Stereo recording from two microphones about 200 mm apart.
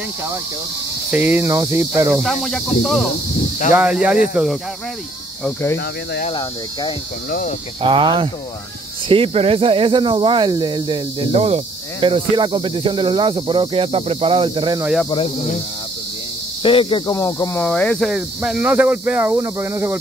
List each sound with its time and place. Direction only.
1.1 s cricket: 10° right (ahead or behind)
2.8 s speech: centre (ahead or behind)
5.4 s speech: 10° left (ahead or behind)
6.2 s speech: 25° left (ahead or behind)
7.2 s speech: 45° left (ahead or behind)
7.8 s speech: 25° right (ahead or behind)
16.6 s speech: 25° left (ahead or behind); by 20.0 s 15° right (ahead or behind)